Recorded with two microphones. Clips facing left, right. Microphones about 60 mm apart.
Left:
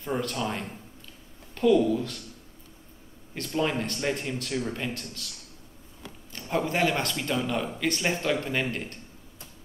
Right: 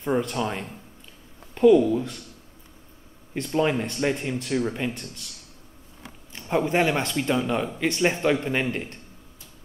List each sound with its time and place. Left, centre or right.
0.2 s speech: centre
3.4 s speech: centre
6.3 s speech: right